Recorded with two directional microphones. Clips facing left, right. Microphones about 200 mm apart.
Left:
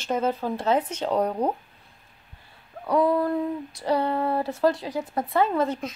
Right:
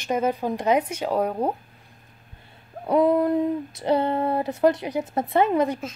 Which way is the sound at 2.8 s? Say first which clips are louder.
Right 3 dB; 20° right (ahead or behind).